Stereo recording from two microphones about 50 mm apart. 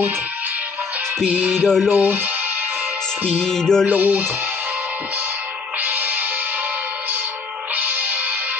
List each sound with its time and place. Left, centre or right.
1.6 s music: centre
2.0 s music: right
3.4 s music: centre
3.8 s music: right
5.8 s music: right
7.7 s music: right